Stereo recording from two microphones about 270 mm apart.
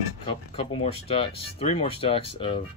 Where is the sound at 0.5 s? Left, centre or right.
Left.